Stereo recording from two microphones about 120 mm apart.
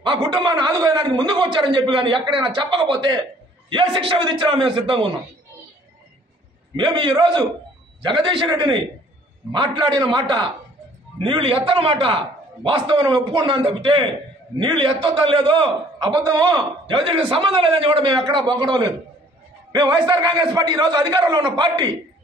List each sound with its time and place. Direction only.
0.0 s a man's voice: 40° right (ahead or behind)
6.8 s a man's voice: 40° right (ahead or behind)